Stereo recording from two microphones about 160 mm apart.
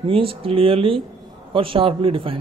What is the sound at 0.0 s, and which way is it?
A man's voice, 35° right (ahead or behind).